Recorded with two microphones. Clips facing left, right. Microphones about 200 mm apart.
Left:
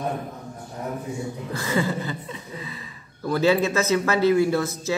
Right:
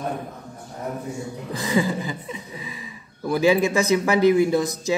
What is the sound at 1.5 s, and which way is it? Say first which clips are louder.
Speech: right 3 dB; 15° right (ahead or behind).